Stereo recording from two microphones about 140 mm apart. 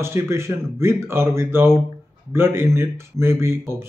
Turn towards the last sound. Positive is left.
turn(degrees=-20)  # may be behind; listen again after turning